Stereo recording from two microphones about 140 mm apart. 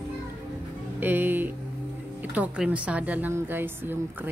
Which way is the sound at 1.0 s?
15° right (ahead or behind).